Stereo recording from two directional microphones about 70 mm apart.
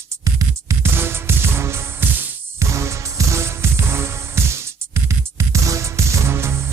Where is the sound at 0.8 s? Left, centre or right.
Right.